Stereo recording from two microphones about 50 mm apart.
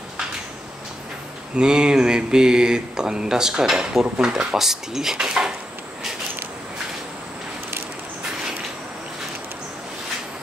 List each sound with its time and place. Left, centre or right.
1.6 s speech: centre